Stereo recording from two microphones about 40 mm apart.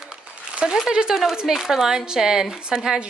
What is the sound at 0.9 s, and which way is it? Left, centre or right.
Speech, centre.